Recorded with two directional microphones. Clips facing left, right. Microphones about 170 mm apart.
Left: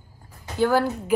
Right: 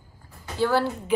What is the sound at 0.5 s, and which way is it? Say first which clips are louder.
Speech: left 2 dB; 50° left (ahead or behind).